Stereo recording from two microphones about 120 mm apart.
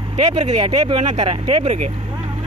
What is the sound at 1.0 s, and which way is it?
Speech, 75° right (ahead or behind).